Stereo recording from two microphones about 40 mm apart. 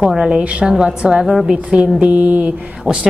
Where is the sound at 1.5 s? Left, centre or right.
Right.